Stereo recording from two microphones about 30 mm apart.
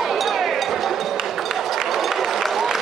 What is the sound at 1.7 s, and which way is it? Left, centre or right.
Run, centre.